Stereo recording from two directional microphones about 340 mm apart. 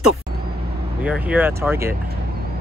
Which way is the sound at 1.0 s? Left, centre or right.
Centre.